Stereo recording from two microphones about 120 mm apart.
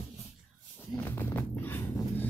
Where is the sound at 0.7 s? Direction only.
20° left (ahead or behind).